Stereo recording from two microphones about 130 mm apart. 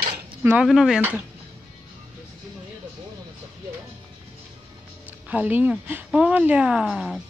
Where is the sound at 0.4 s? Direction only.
15° right (ahead or behind).